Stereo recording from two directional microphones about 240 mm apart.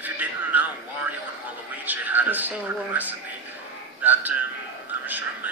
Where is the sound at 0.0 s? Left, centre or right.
Centre.